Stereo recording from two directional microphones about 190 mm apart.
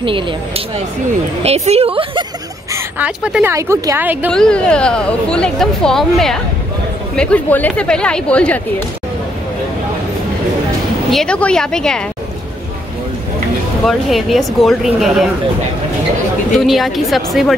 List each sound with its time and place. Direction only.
1.4 s a woman's voice: 35° right (ahead or behind)
2.7 s speech: 5° right (ahead or behind)
4.3 s speech: 5° left (ahead or behind)
11.1 s speech: 5° left (ahead or behind)
13.8 s speech: centre (ahead or behind)
16.5 s speech: centre (ahead or behind)